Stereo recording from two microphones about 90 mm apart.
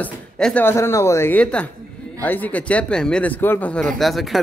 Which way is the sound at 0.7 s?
30° left (ahead or behind).